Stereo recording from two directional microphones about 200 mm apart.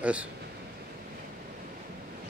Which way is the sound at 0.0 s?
5° right (ahead or behind).